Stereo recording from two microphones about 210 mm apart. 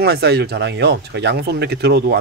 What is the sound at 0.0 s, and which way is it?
Speech, 50° right (ahead or behind).